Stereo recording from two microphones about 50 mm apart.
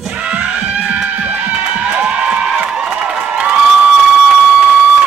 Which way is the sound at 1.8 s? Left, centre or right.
Right.